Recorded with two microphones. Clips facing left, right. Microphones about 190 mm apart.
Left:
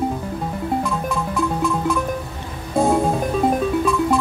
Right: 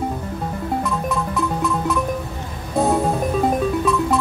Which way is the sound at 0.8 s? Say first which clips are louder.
Even; centre (ahead or behind).